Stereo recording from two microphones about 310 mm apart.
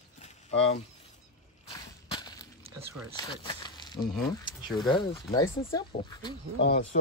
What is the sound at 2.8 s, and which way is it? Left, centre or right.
Speech, right.